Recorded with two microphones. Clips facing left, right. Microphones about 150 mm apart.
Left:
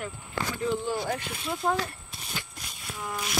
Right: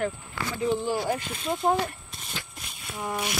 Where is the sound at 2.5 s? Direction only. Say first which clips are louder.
Right 2 dB; 30° right (ahead or behind).